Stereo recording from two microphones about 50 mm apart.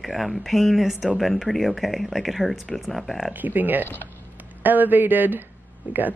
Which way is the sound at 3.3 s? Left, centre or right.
Right.